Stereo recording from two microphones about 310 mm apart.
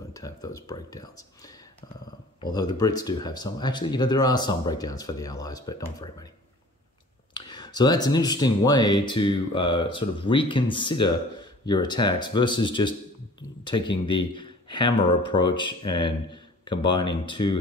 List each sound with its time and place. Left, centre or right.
0.1 s speech: centre
7.3 s speech: centre